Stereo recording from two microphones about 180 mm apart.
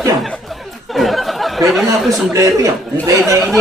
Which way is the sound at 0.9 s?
Centre (ahead or behind).